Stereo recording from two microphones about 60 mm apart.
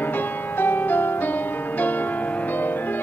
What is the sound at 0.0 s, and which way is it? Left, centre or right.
Music, left.